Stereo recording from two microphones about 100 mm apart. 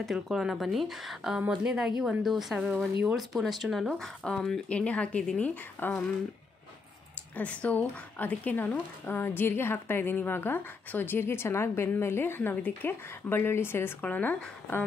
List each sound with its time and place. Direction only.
0.0 s speech: 5° right (ahead or behind)
2.5 s speech: 20° right (ahead or behind)
3.2 s speech: centre (ahead or behind); by 5.9 s 15° left (ahead or behind)
7.3 s a woman's voice: 15° left (ahead or behind)